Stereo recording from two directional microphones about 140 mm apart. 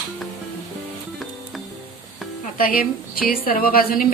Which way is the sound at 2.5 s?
90° left.